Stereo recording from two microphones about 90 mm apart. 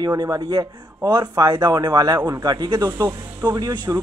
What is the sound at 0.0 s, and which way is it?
Speech, 45° right (ahead or behind).